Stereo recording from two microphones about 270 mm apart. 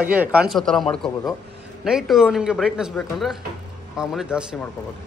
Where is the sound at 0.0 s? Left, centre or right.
Centre.